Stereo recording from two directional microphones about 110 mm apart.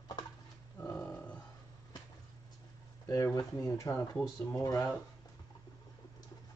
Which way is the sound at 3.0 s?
30° left (ahead or behind).